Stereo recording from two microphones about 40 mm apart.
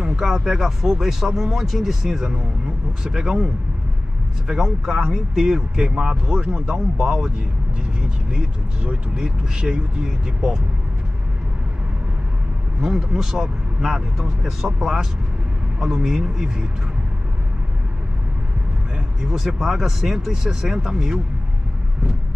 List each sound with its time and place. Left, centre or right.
0.0 s speech: centre
4.5 s speech: centre
6.4 s speech: right
9.1 s speech: centre
12.8 s speech: centre
19.2 s speech: centre